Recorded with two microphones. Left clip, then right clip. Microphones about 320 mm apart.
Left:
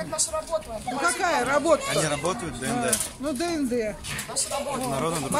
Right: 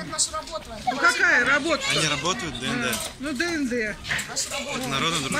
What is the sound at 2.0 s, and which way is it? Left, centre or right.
Speech, left.